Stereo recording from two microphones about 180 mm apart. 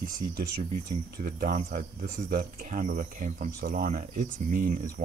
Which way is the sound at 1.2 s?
50° right (ahead or behind).